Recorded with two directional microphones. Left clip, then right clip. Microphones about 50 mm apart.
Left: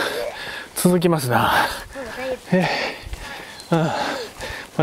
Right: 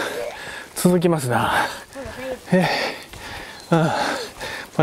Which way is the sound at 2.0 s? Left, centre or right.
Left.